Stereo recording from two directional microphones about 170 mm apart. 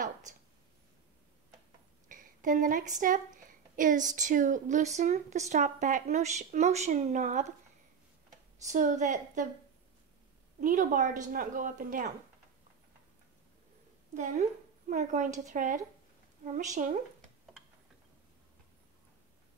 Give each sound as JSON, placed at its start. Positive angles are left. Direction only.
{"t": 2.0, "sound": "a sound", "side_deg": -50}
{"t": 3.0, "sound": "a woman's voice", "side_deg": -50}
{"t": 8.6, "sound": "a woman's voice", "side_deg": -45}
{"t": 10.6, "sound": "a woman's voice", "side_deg": -50}
{"t": 14.9, "sound": "a woman's voice", "side_deg": -50}